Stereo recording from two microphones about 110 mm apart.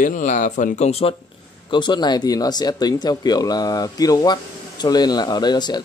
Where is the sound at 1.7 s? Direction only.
45° left (ahead or behind).